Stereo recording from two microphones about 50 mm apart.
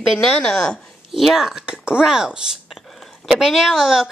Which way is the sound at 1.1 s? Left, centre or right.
Centre.